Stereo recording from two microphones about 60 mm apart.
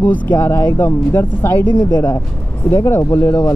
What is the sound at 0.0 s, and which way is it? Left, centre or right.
Speech, left.